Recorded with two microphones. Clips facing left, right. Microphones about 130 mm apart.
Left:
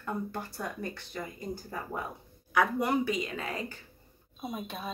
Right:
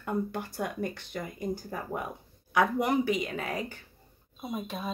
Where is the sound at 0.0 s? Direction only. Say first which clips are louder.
Right 3 dB; 15° right (ahead or behind).